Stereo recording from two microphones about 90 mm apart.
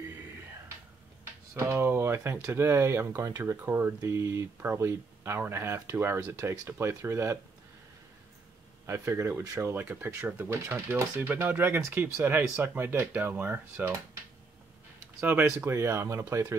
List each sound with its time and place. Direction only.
1.5 s speech: 30° right (ahead or behind)
8.8 s speech: 30° right (ahead or behind)
9.6 s speech: 25° right (ahead or behind)
15.6 s speech: 30° right (ahead or behind)